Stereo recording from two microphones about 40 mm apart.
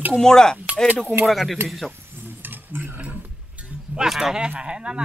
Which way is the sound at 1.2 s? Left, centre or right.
Centre.